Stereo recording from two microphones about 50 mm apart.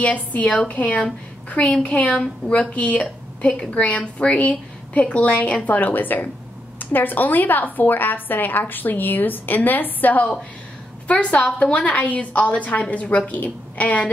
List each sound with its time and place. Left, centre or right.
0.0 s a woman's voice: left